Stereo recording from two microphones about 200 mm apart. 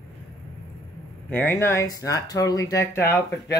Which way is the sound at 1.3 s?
10° left (ahead or behind).